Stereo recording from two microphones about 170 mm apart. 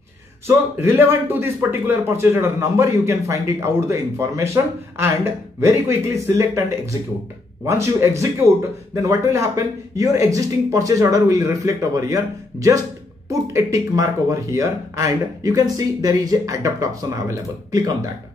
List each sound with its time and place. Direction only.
0.5 s a man's voice: 15° right (ahead or behind)